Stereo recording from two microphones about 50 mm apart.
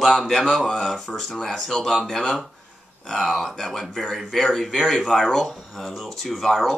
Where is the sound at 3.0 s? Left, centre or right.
Centre.